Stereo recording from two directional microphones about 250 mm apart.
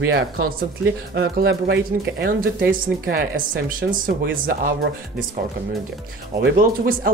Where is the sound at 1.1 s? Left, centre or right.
Right.